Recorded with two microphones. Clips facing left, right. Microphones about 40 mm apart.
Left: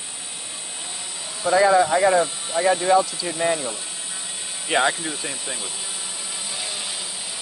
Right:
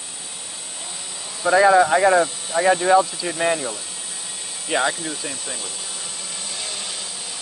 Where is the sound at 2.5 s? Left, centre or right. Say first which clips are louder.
Right 2 dB; centre.